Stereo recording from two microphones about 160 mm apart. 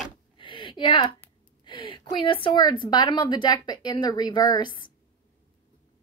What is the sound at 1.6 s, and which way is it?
A woman's voice, 30° left (ahead or behind).